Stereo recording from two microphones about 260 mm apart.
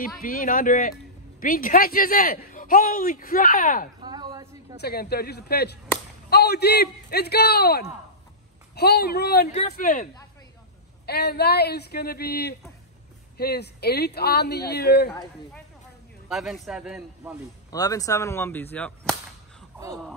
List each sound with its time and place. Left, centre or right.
0.0 s speech: left
4.0 s a sound: centre
4.7 s speech: left
9.5 s speech: left
11.1 s speech: left
16.3 s a man's voice: centre
17.6 s whip: centre